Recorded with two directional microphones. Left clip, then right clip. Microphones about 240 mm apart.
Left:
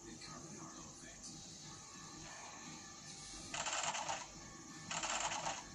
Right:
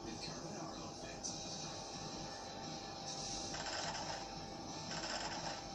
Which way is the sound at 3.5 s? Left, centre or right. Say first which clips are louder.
Left 6 dB; left.